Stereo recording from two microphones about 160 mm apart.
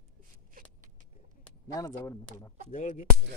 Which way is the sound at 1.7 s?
20° left (ahead or behind).